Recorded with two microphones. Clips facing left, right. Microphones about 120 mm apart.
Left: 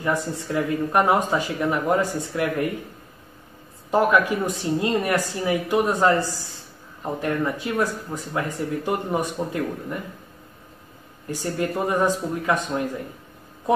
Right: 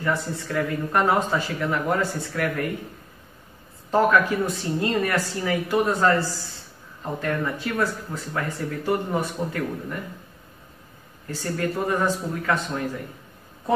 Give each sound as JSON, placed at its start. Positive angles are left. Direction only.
{"t": 0.0, "sound": "speech", "side_deg": 20}
{"t": 3.9, "sound": "speech", "side_deg": 15}
{"t": 11.2, "sound": "speech", "side_deg": 15}
{"t": 13.7, "sound": "a sound", "side_deg": 15}